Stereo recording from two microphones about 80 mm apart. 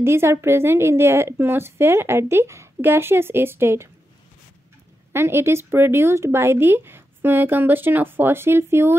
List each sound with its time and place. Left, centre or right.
0.0 s a woman's voice: right
5.1 s speech: right